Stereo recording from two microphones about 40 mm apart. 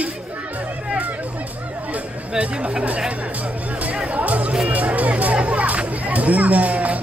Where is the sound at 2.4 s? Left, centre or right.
Right.